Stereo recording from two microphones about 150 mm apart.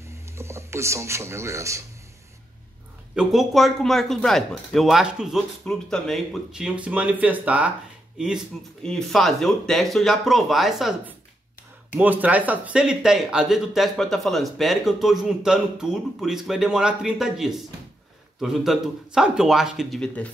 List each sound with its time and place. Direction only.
0.4 s speech: 20° right (ahead or behind)
3.2 s speech: centre (ahead or behind)